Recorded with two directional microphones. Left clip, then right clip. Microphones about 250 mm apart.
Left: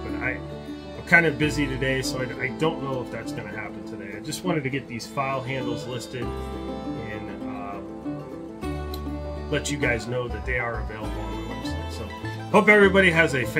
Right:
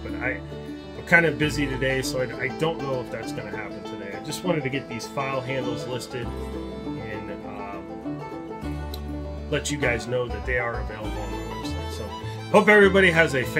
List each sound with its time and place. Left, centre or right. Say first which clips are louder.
1.1 s speech: even; centre
4.3 s speech: right 1 dB; centre
9.5 s speech: even; centre
12.4 s speech: right 1 dB; centre